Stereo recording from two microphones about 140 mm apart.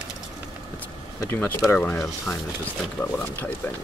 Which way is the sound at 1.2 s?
15° left (ahead or behind).